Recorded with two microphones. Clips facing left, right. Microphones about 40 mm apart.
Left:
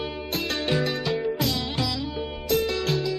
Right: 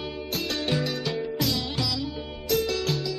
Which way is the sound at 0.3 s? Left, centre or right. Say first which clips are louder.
Left 2 dB; centre.